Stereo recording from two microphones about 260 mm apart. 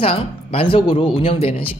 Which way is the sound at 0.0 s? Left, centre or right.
Left.